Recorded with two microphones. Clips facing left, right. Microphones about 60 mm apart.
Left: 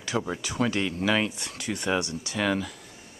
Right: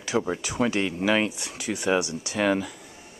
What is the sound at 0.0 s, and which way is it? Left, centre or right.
Speech, centre.